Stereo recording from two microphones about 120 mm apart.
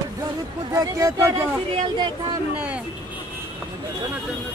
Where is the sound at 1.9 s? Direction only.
40° right (ahead or behind).